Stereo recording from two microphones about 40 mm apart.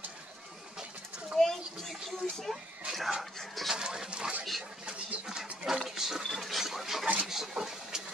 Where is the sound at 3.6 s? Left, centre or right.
Centre.